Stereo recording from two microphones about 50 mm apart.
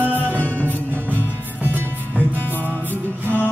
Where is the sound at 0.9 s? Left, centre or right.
Right.